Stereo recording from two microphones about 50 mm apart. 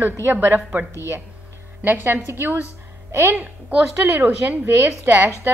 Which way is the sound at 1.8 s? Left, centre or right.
Right.